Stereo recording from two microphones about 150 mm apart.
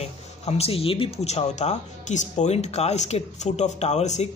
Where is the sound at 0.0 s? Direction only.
45° left (ahead or behind).